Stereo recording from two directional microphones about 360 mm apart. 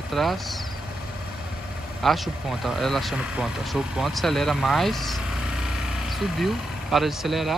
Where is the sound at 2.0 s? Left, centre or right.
Centre.